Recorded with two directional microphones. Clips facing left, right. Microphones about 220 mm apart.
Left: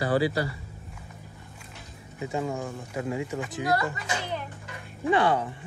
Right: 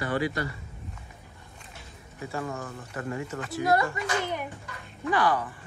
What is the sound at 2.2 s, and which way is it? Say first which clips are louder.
Speech: left 4 dB; 15° left (ahead or behind).